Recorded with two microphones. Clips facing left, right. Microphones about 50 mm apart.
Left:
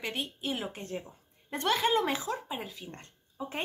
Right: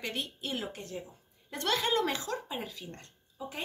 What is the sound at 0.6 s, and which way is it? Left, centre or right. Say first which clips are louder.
Speech: left 2 dB; left.